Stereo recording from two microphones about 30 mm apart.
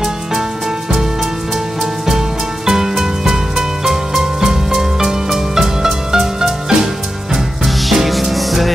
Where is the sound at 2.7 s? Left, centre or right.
Centre.